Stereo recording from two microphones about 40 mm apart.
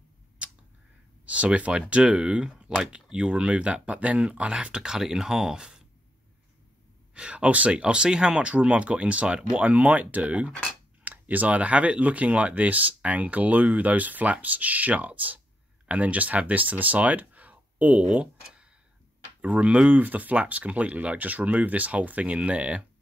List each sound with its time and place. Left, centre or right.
0.4 s a sound: right
1.2 s speech: right
4.9 s speech: centre
7.2 s speech: right
19.4 s speech: right
20.0 s speech: right